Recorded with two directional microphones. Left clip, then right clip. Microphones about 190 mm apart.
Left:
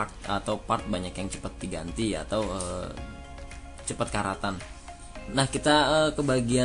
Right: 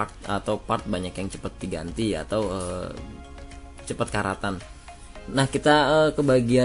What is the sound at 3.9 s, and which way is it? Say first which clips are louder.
Speech: right 3 dB; 20° right (ahead or behind).